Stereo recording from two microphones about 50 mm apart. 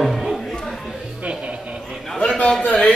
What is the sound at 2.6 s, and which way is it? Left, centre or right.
Speech, left.